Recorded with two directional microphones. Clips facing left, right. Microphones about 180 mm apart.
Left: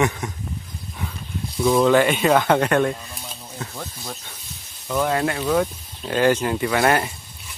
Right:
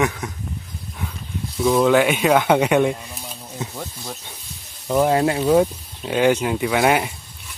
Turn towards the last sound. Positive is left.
turn(degrees=-10)  # may be behind; listen again after turning